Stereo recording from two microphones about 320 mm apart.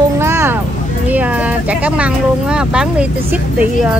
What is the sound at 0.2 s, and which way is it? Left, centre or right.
Vehicle, centre.